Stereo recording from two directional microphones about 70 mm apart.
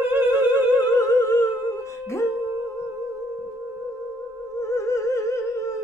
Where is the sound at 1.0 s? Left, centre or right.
Left.